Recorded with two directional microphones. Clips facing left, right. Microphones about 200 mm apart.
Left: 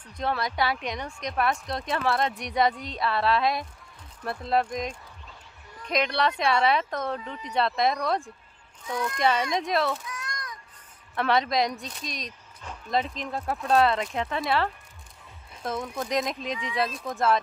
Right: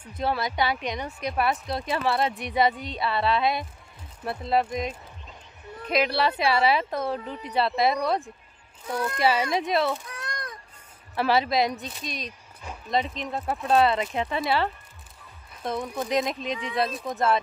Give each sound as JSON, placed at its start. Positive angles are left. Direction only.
{"t": 0.0, "sound": "speech", "side_deg": -5}
{"t": 9.2, "sound": "speech", "side_deg": -5}
{"t": 10.0, "sound": "a sound", "side_deg": -60}
{"t": 11.1, "sound": "speech", "side_deg": -5}